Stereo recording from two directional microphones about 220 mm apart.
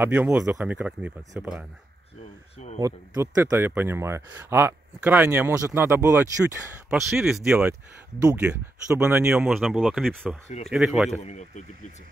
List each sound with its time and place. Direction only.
0.0 s speech: 10° right (ahead or behind)
2.8 s speech: 10° right (ahead or behind)
6.9 s speech: centre (ahead or behind)
11.1 s speech: 30° left (ahead or behind)